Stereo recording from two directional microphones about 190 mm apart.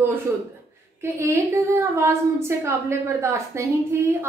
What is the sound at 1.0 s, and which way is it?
A woman's voice, 15° right (ahead or behind).